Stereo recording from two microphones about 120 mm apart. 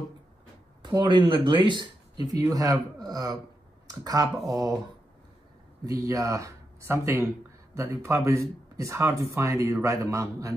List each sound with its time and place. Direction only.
0.8 s speech: 40° right (ahead or behind)
5.9 s speech: 30° right (ahead or behind)